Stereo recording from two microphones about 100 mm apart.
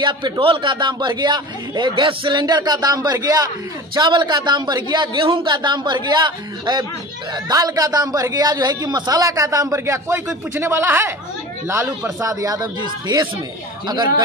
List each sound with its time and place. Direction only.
0.0 s a man's voice: 55° right (ahead or behind); by 3.4 s 40° right (ahead or behind)
3.9 s a man's voice: 50° right (ahead or behind)
12.8 s a man's voice: 45° right (ahead or behind)